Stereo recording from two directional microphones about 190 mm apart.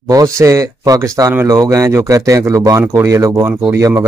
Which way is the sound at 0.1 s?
15° right (ahead or behind).